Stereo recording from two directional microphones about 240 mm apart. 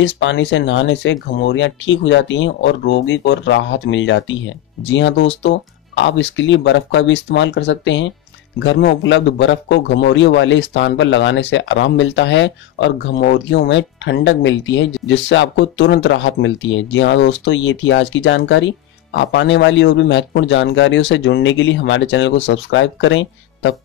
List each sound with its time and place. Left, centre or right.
0.0 s speech: left